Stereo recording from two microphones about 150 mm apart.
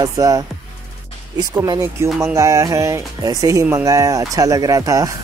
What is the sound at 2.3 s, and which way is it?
Speech, 20° right (ahead or behind).